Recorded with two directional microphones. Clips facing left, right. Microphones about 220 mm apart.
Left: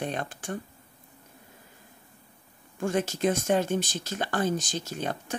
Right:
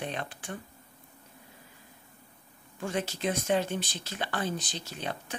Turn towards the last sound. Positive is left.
turn(degrees=45)  # may be behind; listen again after turning